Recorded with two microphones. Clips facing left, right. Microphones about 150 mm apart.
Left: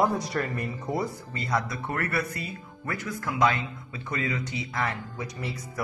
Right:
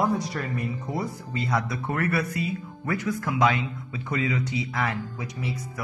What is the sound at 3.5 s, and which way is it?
Speech, 15° right (ahead or behind).